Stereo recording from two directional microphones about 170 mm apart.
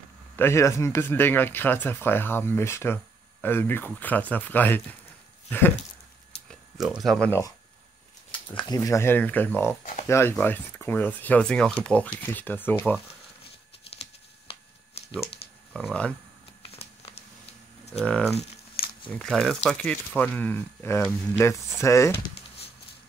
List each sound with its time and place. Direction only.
0.4 s speech: 15° left (ahead or behind)
6.5 s speech: centre (ahead or behind)
7.2 s speech: 15° left (ahead or behind)
8.3 s a sound: 30° left (ahead or behind)
8.7 s speech: 15° left (ahead or behind)
14.5 s a sound: 35° left (ahead or behind)
15.7 s speech: 5° left (ahead or behind)
16.6 s a sound: 35° left (ahead or behind)
17.9 s speech: 5° left (ahead or behind)